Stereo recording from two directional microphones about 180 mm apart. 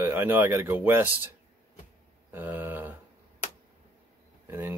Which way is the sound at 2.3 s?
10° right (ahead or behind).